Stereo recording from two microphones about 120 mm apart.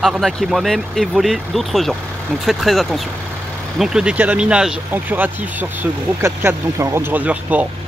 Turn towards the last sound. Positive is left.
turn(degrees=-10)  # may be behind; listen again after turning